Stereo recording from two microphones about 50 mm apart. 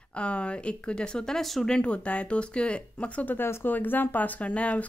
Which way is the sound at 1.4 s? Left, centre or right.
Centre.